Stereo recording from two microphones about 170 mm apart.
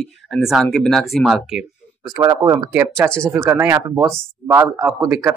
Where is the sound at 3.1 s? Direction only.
5° left (ahead or behind).